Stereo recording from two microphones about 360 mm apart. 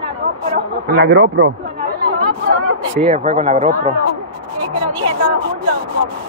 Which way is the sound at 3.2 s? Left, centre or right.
Centre.